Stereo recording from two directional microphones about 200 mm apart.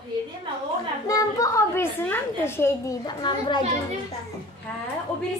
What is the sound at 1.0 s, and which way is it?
A woman's voice, 15° left (ahead or behind).